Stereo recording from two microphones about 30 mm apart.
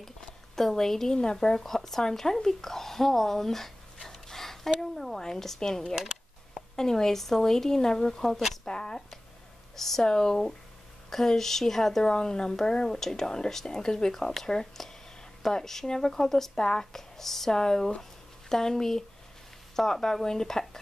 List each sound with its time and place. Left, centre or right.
0.6 s speech: centre
2.4 s a sound: centre
5.2 s a woman's voice: centre
8.6 s a sound: left
9.8 s speech: centre
12.0 s speech: left